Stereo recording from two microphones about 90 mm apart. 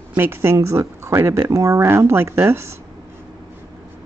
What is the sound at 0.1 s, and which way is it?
Speech, 25° right (ahead or behind).